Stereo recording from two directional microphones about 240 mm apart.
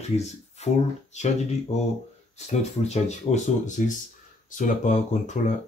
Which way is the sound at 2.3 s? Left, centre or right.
Left.